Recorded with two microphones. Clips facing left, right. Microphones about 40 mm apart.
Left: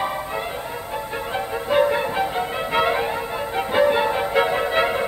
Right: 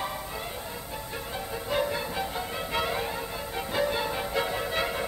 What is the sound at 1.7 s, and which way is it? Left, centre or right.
Music, left.